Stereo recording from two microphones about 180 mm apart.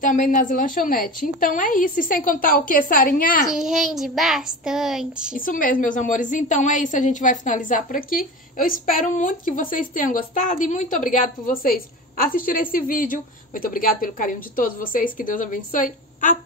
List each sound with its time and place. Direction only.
0.0 s a woman's voice: 45° left (ahead or behind)
3.4 s child singing: centre (ahead or behind)
5.4 s a woman's voice: 50° left (ahead or behind)